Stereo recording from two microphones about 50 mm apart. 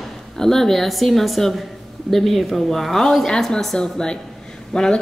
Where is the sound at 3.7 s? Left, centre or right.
Centre.